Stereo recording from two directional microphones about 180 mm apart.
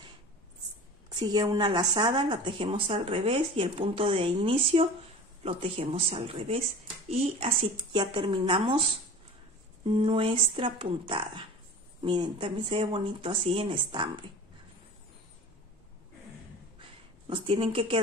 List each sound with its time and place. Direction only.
1.2 s speech: 20° right (ahead or behind)
9.8 s speech: 30° right (ahead or behind)
17.3 s speech: 30° right (ahead or behind)